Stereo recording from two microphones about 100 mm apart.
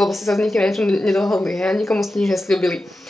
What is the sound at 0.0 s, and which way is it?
Speech, centre (ahead or behind).